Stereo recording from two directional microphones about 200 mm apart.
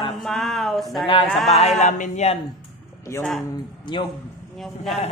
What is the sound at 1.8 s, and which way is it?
Speech, 35° left (ahead or behind).